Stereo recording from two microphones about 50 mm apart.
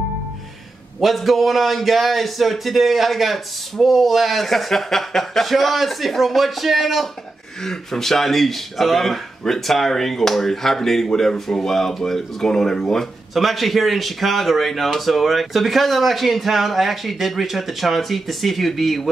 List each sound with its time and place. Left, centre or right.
1.0 s a man's voice: centre